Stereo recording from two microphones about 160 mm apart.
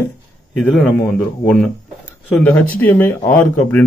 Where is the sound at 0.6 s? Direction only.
5° left (ahead or behind).